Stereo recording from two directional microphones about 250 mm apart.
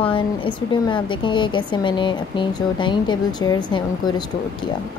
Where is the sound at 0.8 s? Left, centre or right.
Centre.